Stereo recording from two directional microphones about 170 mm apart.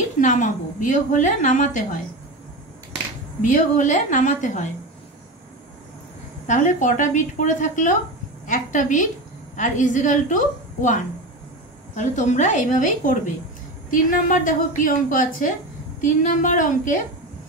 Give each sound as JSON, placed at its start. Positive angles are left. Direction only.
{"t": 0.2, "sound": "a woman's voice", "side_deg": 50}
{"t": 3.5, "sound": "a woman's voice", "side_deg": 50}
{"t": 6.4, "sound": "a woman's voice", "side_deg": 45}